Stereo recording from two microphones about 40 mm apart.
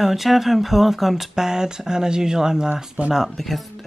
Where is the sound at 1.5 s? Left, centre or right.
Centre.